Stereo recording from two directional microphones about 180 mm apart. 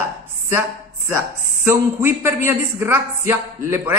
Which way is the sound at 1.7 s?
15° right (ahead or behind).